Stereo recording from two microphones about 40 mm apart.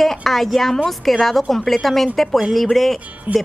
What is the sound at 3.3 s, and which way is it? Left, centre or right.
Speech, right.